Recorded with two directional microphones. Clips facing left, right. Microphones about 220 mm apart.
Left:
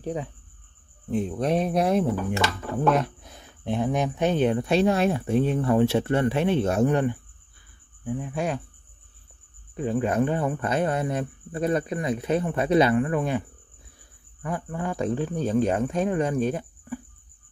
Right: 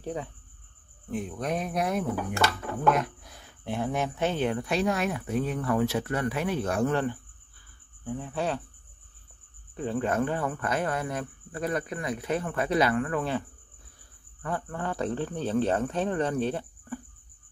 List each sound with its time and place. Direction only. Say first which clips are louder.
0.0 s speech: left 4 dB; 15° left (ahead or behind)
9.8 s speech: left 4 dB; 15° left (ahead or behind)
14.4 s speech: left 2 dB; 15° left (ahead or behind)